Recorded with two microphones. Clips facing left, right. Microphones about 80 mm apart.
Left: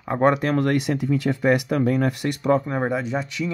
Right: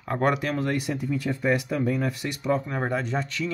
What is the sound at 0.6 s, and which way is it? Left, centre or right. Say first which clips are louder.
Speech: left 6 dB; left.